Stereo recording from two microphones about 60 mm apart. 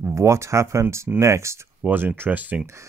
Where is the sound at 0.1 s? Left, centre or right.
Right.